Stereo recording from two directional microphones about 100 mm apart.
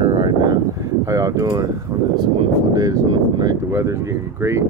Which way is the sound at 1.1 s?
35° right (ahead or behind).